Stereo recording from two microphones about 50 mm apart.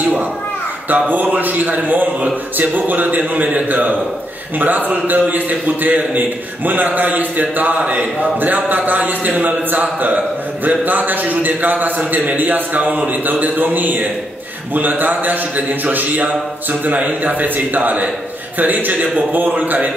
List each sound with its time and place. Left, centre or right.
0.8 s a man's voice: right